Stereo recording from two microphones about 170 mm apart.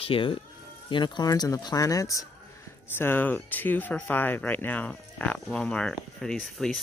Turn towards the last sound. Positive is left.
turn(degrees=5)  # may be behind; listen again after turning